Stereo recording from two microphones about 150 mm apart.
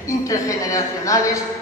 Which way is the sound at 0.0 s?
20° left (ahead or behind).